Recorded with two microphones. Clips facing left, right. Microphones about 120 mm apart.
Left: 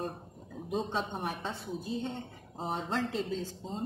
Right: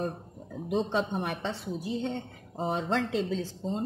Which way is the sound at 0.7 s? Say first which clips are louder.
Right 5 dB; 85° right.